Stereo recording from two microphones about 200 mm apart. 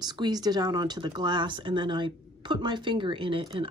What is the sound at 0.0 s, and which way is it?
Speech, 20° right (ahead or behind).